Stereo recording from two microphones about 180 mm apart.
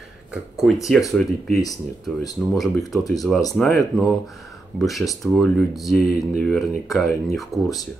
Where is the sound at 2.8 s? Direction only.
20° left (ahead or behind).